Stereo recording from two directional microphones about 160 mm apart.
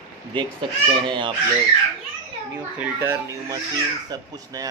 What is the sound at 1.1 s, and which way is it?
Speech, 30° right (ahead or behind).